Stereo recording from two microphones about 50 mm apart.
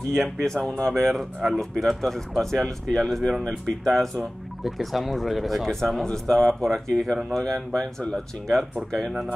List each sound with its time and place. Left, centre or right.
0.1 s speech: centre